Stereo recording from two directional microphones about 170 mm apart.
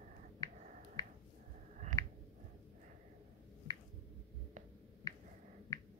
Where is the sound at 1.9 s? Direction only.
50° right (ahead or behind).